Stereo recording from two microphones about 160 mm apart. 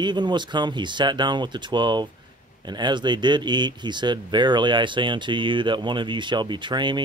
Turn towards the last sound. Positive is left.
turn(degrees=-30)  # may be behind; listen again after turning